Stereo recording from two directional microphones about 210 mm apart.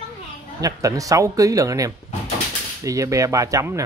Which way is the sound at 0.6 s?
15° right (ahead or behind).